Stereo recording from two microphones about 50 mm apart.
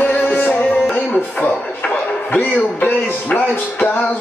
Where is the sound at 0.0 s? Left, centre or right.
Left.